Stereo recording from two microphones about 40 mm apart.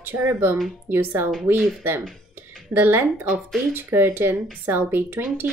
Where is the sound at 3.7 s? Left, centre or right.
Right.